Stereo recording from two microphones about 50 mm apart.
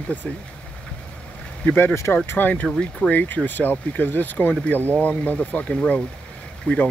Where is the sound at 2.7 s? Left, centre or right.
Centre.